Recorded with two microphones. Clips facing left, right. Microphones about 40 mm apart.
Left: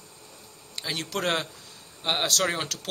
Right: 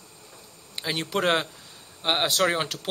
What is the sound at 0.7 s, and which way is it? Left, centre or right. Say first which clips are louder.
Speech: right 3 dB; centre.